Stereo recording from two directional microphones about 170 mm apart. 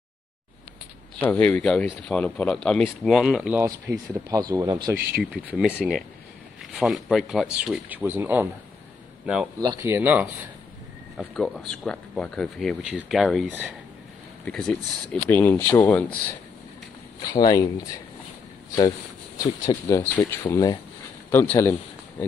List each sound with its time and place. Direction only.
1.2 s speech: 10° left (ahead or behind)
3.9 s speech: 20° right (ahead or behind)
5.2 s speech: 5° right (ahead or behind)
5.7 s a man's voice: 5° left (ahead or behind)
9.6 s speech: 20° right (ahead or behind)
11.1 s speech: centre (ahead or behind)
17.2 s speech: 25° left (ahead or behind)
20.0 s speech: 10° left (ahead or behind)
20.4 s speech: 20° left (ahead or behind)